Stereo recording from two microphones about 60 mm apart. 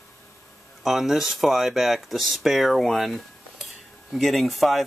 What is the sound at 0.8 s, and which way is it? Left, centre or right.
Speech, centre.